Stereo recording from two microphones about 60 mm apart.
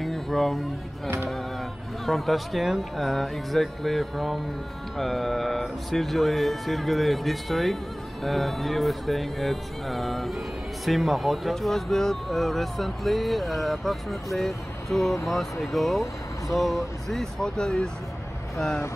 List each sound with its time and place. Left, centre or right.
0.0 s a sound: centre
1.0 s music: right
2.0 s speech: centre